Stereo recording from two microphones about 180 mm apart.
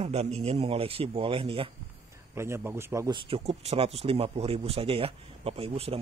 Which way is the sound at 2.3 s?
15° right (ahead or behind).